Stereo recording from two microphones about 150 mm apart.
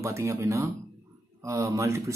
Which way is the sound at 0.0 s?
20° right (ahead or behind).